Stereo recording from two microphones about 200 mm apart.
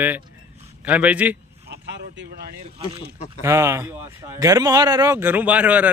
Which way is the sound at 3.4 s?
15° right (ahead or behind).